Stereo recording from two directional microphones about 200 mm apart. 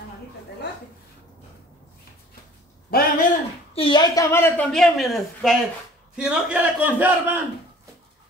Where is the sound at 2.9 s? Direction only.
50° left (ahead or behind).